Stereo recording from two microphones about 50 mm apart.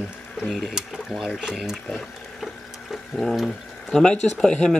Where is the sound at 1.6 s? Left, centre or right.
Centre.